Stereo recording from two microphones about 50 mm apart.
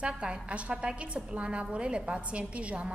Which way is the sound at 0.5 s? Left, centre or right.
Right.